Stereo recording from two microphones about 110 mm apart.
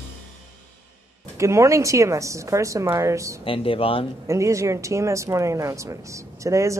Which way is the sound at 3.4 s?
55° left (ahead or behind).